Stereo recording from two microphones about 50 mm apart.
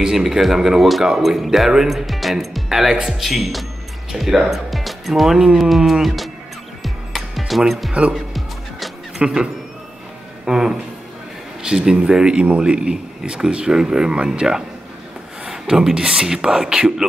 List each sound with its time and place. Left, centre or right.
0.0 s speech: centre
6.0 s music: centre
9.2 s speech: centre